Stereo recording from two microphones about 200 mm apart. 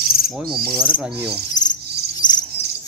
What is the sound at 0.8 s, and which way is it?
Cricket, 5° right (ahead or behind).